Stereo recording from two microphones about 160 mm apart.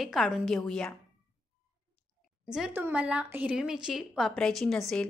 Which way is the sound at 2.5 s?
10° right (ahead or behind).